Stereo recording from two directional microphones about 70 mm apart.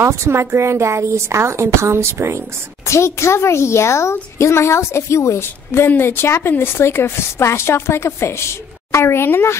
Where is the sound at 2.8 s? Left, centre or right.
Left.